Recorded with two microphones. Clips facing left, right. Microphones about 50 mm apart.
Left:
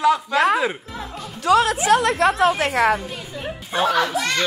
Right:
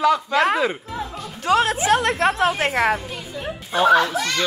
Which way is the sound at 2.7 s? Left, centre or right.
Left.